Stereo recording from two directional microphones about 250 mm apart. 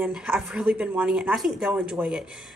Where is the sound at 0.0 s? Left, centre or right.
Centre.